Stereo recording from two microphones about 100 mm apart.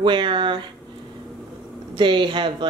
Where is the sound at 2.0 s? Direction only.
55° right (ahead or behind).